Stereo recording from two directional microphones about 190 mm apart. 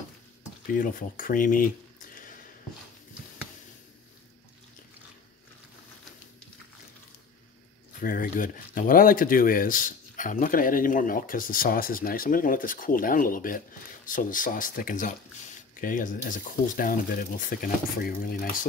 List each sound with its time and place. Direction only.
0.7 s speech: 45° left (ahead or behind)
8.0 s speech: 45° left (ahead or behind)